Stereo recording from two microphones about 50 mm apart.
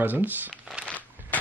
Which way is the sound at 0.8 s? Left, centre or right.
Left.